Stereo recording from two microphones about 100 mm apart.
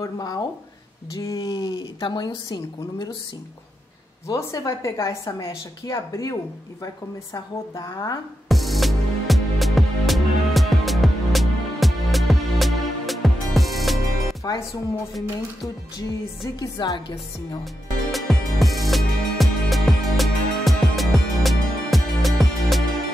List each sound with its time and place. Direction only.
0.0 s speech: 40° left (ahead or behind)
1.5 s speech: 45° left (ahead or behind)
4.3 s speech: 35° left (ahead or behind)
7.3 s speech: 35° left (ahead or behind)
8.5 s music: centre (ahead or behind)
14.4 s speech: 35° left (ahead or behind)
16.5 s speech: 45° left (ahead or behind)
18.1 s music: centre (ahead or behind)